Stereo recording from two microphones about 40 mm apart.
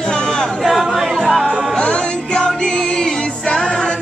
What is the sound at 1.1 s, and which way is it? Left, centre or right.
Music, centre.